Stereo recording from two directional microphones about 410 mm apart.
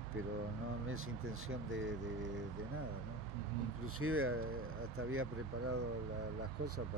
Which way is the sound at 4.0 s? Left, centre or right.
Right.